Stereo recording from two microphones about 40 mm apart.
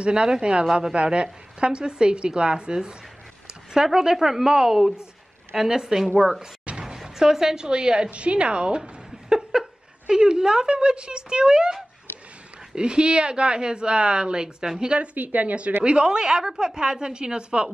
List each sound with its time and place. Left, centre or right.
0.0 s a woman's voice: right
15.1 s speech: right
15.8 s speech: right